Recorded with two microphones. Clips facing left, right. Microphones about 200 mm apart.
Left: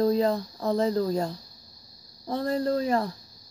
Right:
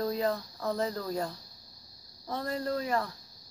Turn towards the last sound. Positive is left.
turn(degrees=30)  # may be behind; listen again after turning